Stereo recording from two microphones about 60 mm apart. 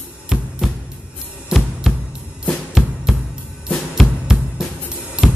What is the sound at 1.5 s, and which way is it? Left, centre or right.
Music, centre.